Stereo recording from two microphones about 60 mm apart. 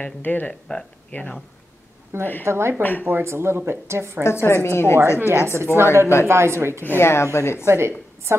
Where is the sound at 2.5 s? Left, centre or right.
Right.